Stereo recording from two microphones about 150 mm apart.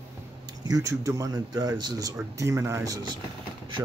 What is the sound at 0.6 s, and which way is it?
Speech, 20° right (ahead or behind).